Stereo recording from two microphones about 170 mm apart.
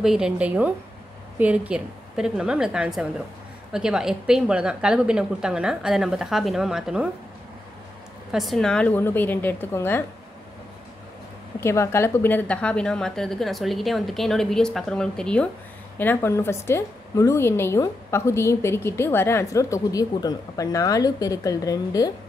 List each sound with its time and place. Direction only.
0.0 s a woman's voice: 5° right (ahead or behind)
8.3 s a woman's voice: centre (ahead or behind)
11.6 s a woman's voice: 15° left (ahead or behind)